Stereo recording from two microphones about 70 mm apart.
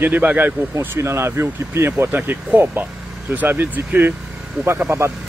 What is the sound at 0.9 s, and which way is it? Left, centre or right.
Speech, right.